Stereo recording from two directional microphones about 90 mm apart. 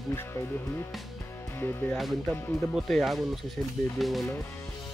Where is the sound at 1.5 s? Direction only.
25° left (ahead or behind).